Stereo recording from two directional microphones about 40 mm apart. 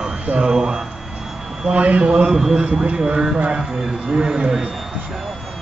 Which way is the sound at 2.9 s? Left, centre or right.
Centre.